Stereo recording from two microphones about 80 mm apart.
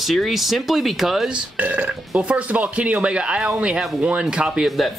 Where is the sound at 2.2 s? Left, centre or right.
Centre.